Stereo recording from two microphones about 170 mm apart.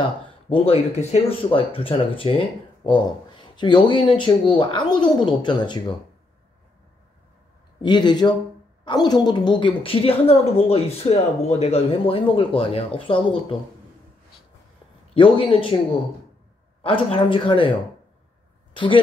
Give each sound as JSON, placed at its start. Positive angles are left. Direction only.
{"t": 0.5, "sound": "a woman's voice", "side_deg": 35}
{"t": 7.8, "sound": "a woman's voice", "side_deg": 25}
{"t": 15.1, "sound": "a woman's voice", "side_deg": 30}
{"t": 16.8, "sound": "a woman's voice", "side_deg": 30}